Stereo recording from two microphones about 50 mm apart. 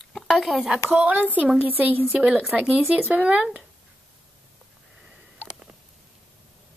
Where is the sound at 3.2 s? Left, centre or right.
Right.